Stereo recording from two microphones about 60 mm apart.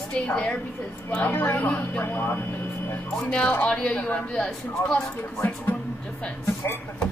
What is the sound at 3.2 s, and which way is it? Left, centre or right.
Speech, centre.